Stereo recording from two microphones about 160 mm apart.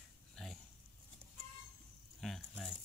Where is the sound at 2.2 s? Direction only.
Centre (ahead or behind).